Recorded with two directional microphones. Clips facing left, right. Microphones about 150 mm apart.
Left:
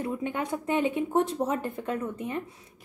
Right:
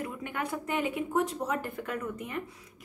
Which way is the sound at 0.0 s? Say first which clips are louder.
Left 5 dB; 25° left (ahead or behind).